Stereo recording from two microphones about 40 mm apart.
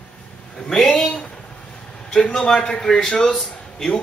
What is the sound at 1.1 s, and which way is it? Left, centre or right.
Speech, left.